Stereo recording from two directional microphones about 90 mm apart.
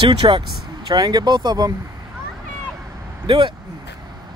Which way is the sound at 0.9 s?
45° right (ahead or behind).